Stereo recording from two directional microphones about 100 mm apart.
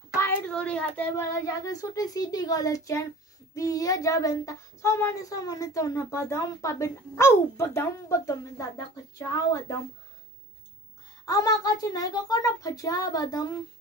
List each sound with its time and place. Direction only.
0.1 s a sound: 25° left (ahead or behind)
0.5 s speech: 10° left (ahead or behind)
1.1 s speech: 35° left (ahead or behind)
11.2 s speech: 40° left (ahead or behind)